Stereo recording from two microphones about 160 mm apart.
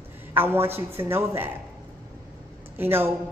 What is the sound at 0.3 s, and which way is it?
A woman's voice, 15° right (ahead or behind).